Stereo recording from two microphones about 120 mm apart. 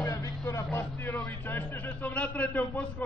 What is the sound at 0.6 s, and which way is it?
Vehicle, 15° left (ahead or behind).